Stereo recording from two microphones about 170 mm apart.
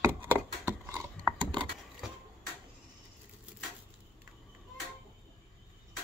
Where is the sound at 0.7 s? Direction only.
15° right (ahead or behind).